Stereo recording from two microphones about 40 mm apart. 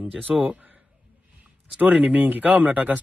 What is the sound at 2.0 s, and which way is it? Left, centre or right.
Speech, right.